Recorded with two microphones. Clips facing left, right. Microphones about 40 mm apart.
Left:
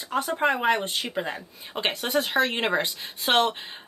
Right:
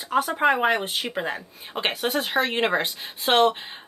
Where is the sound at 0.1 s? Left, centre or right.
Centre.